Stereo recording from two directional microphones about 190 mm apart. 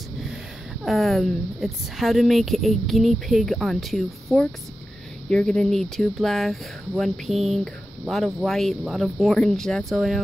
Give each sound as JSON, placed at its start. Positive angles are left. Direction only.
{"t": 0.8, "sound": "speech", "side_deg": 0}